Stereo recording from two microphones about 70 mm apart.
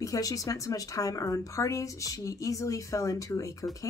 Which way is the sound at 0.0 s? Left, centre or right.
Left.